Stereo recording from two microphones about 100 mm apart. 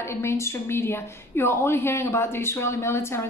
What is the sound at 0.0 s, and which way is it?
A woman's voice, 25° left (ahead or behind).